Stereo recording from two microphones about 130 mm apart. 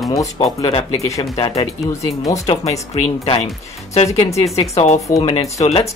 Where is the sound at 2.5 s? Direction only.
55° left (ahead or behind).